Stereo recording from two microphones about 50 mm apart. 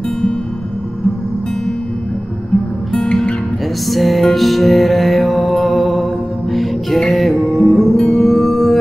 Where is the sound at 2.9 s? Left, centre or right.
Centre.